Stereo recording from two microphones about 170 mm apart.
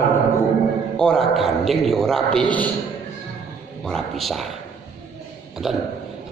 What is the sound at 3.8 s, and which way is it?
Speech, centre (ahead or behind).